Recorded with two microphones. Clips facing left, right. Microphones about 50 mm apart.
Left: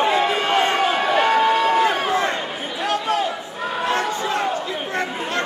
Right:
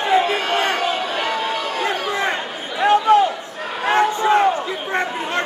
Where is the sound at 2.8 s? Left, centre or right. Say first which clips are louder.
Right 8 dB; right.